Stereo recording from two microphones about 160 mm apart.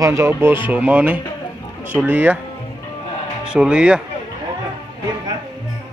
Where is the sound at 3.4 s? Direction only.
5° right (ahead or behind).